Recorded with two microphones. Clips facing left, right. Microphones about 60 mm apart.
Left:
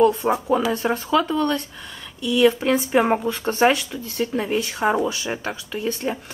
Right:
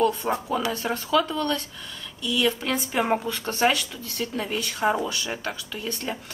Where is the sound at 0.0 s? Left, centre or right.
Centre.